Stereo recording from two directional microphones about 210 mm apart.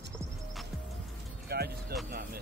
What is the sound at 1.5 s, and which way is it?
Music, 50° right (ahead or behind).